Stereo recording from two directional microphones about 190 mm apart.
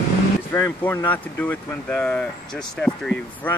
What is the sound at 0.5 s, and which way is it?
Speech, 10° left (ahead or behind).